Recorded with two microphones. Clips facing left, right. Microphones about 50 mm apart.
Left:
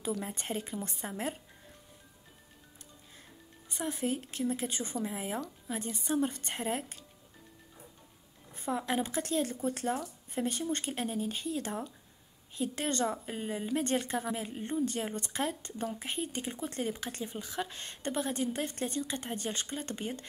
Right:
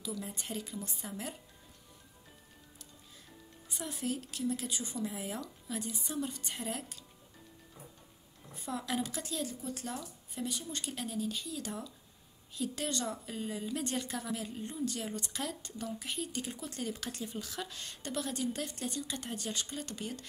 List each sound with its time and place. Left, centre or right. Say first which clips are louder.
0.0 s a woman's voice: left 5 dB; left
3.7 s a woman's voice: left 4 dB; left
8.5 s a woman's voice: left 4 dB; left
9.3 s a woman's voice: left 7 dB; left